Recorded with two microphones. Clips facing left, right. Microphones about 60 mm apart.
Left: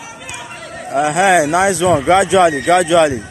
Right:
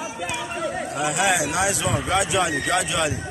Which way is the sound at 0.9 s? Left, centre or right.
Left.